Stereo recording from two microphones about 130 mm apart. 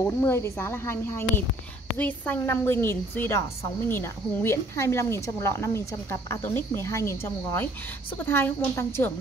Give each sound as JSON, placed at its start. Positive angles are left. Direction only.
{"t": 0.0, "sound": "a woman's voice", "side_deg": 20}